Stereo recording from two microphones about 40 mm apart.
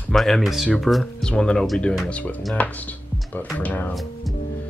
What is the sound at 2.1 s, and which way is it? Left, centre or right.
Speech, left.